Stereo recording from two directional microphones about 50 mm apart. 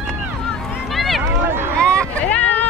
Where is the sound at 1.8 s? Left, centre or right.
Left.